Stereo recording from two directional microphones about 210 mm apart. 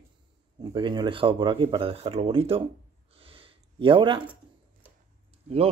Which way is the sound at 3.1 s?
25° right (ahead or behind).